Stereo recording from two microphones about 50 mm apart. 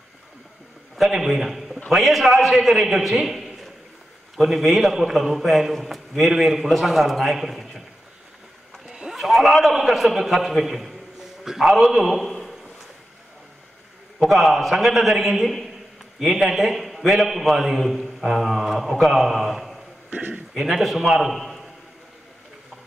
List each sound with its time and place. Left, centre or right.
0.9 s a man's voice: centre
8.8 s a sound: centre
9.1 s a man's voice: centre
14.2 s a man's voice: centre
20.1 s a man's voice: right
20.5 s a man's voice: centre